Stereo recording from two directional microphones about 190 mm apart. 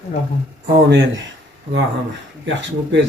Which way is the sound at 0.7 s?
70° right (ahead or behind).